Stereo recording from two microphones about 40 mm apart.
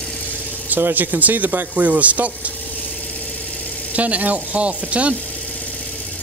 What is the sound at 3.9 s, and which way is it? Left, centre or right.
Speech, right.